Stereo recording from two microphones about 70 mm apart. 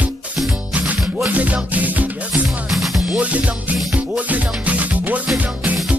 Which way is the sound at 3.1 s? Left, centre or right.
Centre.